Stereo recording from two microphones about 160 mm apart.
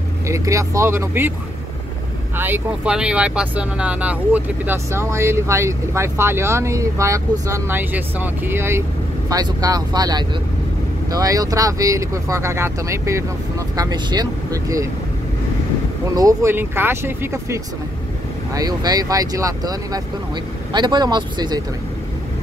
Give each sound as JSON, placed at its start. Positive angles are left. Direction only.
{"t": 0.3, "sound": "speech", "side_deg": -20}
{"t": 2.3, "sound": "speech", "side_deg": -10}
{"t": 16.2, "sound": "speech", "side_deg": -15}